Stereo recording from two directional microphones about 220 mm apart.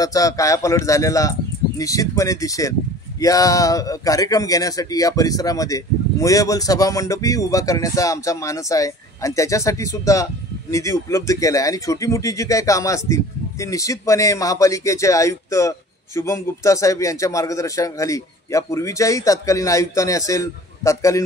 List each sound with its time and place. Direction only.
0.0 s speech: 15° left (ahead or behind)